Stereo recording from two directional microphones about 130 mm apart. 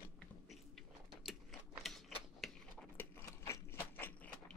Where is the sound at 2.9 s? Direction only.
20° left (ahead or behind).